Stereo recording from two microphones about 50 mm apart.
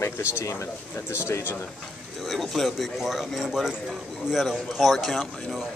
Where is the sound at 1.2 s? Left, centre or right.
Left.